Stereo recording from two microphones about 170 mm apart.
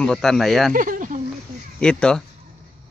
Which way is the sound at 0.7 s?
50° right (ahead or behind).